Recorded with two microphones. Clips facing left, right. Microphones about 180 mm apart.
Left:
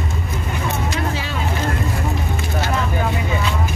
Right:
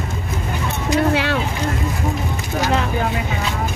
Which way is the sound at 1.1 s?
70° right (ahead or behind).